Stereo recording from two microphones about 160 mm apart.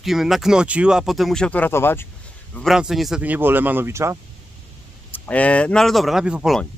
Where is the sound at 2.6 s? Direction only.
Centre (ahead or behind).